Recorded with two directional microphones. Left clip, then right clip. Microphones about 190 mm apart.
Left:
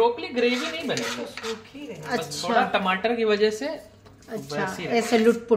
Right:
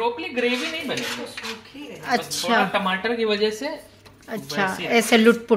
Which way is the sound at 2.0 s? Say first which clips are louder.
Right 4 dB; 40° right (ahead or behind).